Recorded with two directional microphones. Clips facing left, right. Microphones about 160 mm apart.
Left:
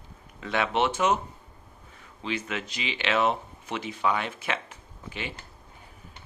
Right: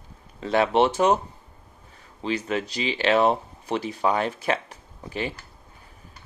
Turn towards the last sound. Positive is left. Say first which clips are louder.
# right 7 dB
turn(degrees=-40)  # may be behind; listen again after turning